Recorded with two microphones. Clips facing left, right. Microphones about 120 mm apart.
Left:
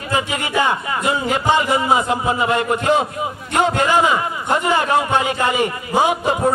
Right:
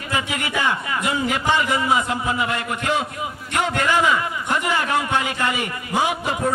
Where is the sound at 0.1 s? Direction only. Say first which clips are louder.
Left 4 dB; 35° left (ahead or behind).